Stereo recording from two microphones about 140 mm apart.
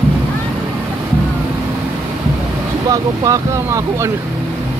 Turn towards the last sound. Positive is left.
turn(degrees=-20)  # may be behind; listen again after turning